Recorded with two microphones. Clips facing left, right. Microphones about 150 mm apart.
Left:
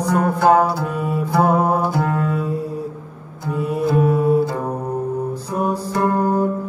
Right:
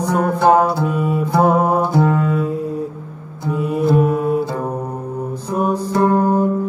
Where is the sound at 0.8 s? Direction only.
5° right (ahead or behind).